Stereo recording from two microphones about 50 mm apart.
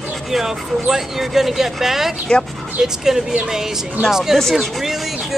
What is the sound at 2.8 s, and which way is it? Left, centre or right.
Speech, right.